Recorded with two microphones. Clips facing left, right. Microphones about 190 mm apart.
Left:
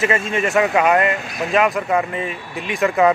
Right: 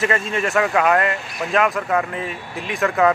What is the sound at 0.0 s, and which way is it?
A man's voice, centre (ahead or behind).